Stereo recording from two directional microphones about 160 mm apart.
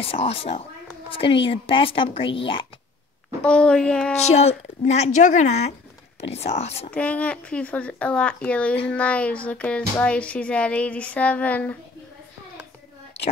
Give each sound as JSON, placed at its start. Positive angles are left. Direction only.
{"t": 0.0, "sound": "a woman's voice", "side_deg": 35}
{"t": 3.4, "sound": "speech", "side_deg": 5}
{"t": 4.2, "sound": "a woman's voice", "side_deg": 40}
{"t": 6.9, "sound": "speech", "side_deg": 10}